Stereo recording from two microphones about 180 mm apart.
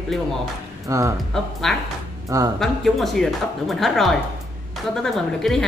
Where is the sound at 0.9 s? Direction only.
15° right (ahead or behind).